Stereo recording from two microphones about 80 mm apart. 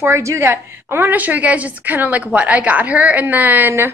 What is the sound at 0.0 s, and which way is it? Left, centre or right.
A woman's voice, right.